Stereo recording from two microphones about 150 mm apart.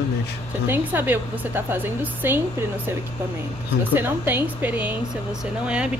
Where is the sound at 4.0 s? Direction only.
15° right (ahead or behind).